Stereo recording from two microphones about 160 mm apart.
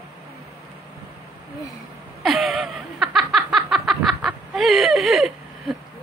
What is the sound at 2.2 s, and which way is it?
Snicker, centre (ahead or behind).